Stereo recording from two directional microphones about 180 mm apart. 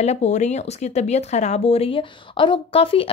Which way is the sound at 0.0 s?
35° left (ahead or behind).